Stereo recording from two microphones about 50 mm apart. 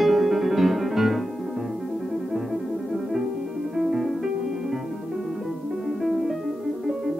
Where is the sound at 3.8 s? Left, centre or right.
Centre.